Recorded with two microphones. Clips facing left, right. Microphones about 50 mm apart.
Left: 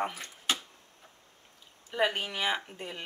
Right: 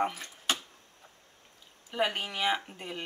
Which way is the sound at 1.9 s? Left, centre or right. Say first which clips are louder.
Left 1 dB; centre.